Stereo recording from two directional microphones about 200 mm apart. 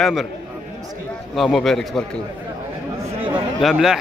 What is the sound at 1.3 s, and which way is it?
Speech, centre (ahead or behind).